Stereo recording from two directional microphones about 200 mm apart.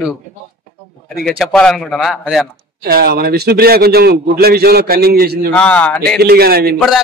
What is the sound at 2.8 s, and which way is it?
A man's voice, 50° right (ahead or behind).